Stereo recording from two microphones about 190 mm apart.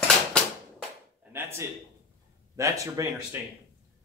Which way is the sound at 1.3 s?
10° right (ahead or behind).